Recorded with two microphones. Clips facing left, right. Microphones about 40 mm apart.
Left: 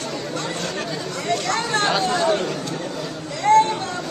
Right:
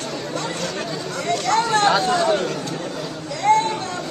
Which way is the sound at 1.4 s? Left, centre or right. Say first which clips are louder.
Right 6 dB; right.